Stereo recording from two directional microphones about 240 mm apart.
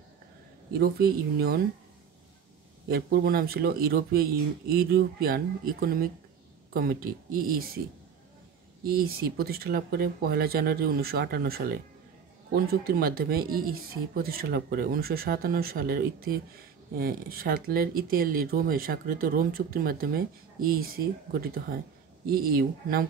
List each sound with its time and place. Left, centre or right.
0.7 s speech: right
2.9 s speech: right
8.8 s speech: right